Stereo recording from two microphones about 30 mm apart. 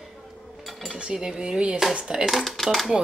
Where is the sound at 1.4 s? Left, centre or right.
Right.